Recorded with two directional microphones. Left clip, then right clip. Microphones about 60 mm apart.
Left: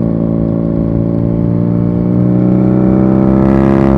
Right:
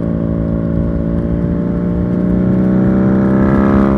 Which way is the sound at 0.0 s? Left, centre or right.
Right.